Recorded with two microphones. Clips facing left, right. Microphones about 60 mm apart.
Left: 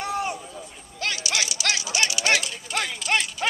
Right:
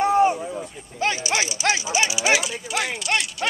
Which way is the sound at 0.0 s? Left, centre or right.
Right.